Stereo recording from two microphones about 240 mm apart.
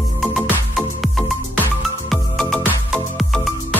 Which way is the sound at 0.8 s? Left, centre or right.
Centre.